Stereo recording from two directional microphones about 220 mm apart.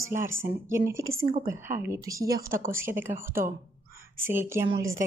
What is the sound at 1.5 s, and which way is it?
A woman's voice, 10° right (ahead or behind).